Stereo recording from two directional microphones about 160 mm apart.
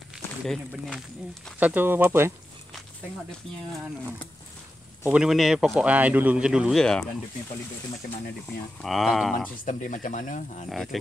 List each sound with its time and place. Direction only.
0.5 s speech: 5° left (ahead or behind)
1.6 s speech: 10° right (ahead or behind)
5.0 s speech: 5° right (ahead or behind)
8.8 s speech: centre (ahead or behind)
9.7 s speech: 55° left (ahead or behind)
10.7 s speech: centre (ahead or behind)